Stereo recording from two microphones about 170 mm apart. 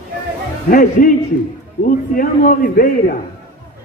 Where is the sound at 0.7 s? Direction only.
55° left (ahead or behind).